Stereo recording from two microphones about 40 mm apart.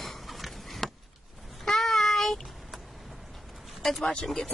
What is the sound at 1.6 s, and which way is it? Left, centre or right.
Child singing, centre.